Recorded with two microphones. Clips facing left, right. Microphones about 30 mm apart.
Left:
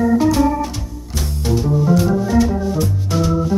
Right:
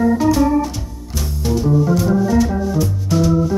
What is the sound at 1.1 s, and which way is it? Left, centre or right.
Music, centre.